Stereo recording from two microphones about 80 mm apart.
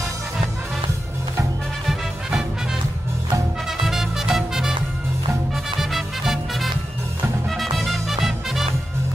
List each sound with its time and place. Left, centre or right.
1.9 s music: centre
3.8 s music: centre
5.8 s music: centre
7.7 s music: centre